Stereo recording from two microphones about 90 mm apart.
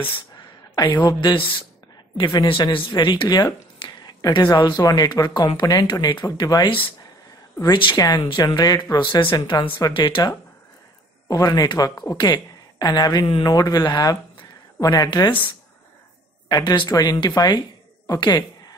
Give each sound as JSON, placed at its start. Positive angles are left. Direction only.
{"t": 1.0, "sound": "speech", "side_deg": 60}
{"t": 11.2, "sound": "speech", "side_deg": 45}
{"t": 15.0, "sound": "speech", "side_deg": 55}
{"t": 16.4, "sound": "speech", "side_deg": 50}
{"t": 18.0, "sound": "a sound", "side_deg": 45}